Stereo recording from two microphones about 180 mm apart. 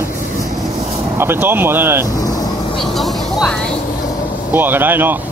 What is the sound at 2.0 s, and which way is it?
Vehicle, 20° left (ahead or behind).